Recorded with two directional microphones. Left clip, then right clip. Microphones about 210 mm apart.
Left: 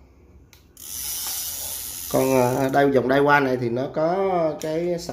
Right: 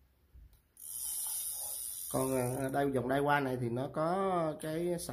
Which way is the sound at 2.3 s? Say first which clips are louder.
Left 17 dB; centre (ahead or behind).